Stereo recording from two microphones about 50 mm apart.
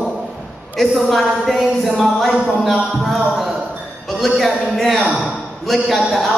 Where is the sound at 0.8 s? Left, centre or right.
Centre.